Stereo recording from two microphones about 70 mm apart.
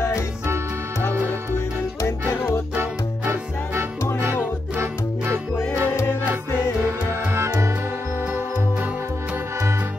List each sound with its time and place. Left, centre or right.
1.1 s music: right
2.8 s music: right